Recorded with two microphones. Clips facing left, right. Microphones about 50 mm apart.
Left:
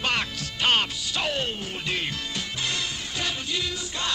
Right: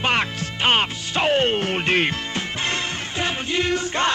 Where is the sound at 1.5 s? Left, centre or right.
Right.